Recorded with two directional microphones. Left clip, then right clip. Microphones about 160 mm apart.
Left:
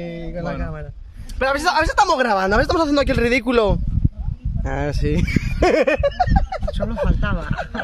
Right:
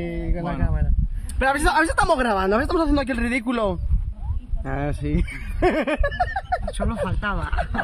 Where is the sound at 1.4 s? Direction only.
35° left (ahead or behind); by 3.8 s 80° left.